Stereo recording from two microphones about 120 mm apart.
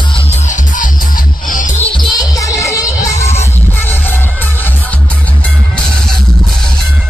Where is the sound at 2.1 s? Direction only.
25° left (ahead or behind).